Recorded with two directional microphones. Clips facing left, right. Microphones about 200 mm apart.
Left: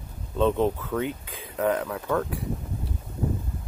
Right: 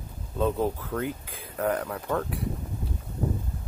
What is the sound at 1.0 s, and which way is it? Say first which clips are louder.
Speech: left 1 dB; 90° left.